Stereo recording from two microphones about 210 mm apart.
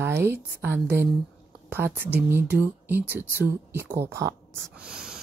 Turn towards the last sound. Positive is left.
turn(degrees=-5)  # may be behind; listen again after turning